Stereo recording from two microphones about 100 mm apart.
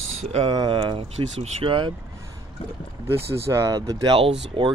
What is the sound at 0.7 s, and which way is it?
Speech, 65° right (ahead or behind).